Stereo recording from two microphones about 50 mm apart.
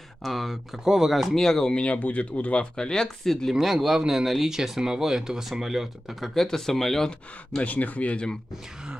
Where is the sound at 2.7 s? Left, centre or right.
Centre.